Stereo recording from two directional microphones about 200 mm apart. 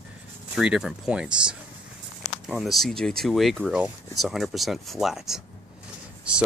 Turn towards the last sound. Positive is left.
turn(degrees=-5)  # may be behind; listen again after turning